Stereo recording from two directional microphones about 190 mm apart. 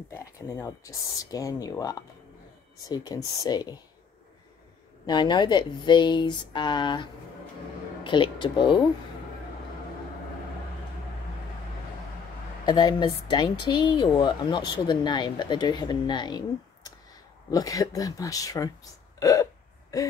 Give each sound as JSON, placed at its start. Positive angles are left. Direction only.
{"t": 0.1, "sound": "a woman's voice", "side_deg": 15}
{"t": 5.0, "sound": "a woman's voice", "side_deg": 25}
{"t": 12.6, "sound": "a woman's voice", "side_deg": 20}
{"t": 19.1, "sound": "hiccup", "side_deg": 15}
{"t": 19.9, "sound": "a woman's voice", "side_deg": 20}